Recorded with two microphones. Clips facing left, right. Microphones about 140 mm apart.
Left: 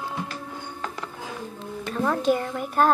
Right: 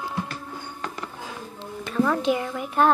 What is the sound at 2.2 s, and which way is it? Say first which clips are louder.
Speech: left 1 dB; 45° left (ahead or behind).